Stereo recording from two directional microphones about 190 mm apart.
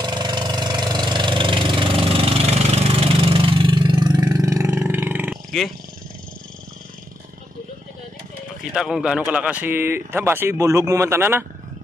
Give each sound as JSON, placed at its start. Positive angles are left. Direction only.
{"t": 0.0, "sound": "engine", "side_deg": -25}
{"t": 8.7, "sound": "speech", "side_deg": 0}